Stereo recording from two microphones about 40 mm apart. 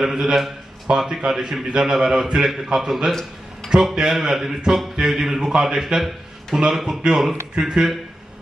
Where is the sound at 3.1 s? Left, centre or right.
Centre.